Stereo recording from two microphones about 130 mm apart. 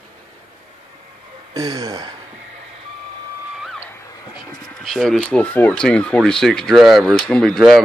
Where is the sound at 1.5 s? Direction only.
30° right (ahead or behind).